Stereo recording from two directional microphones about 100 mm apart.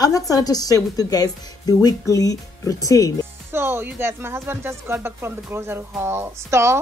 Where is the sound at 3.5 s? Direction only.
25° right (ahead or behind).